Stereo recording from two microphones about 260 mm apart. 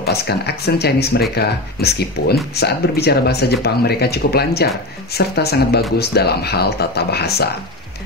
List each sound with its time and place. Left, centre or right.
0.0 s speech: left